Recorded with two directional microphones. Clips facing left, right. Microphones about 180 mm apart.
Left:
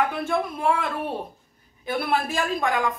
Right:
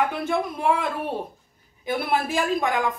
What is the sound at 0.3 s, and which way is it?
Speech, 15° right (ahead or behind).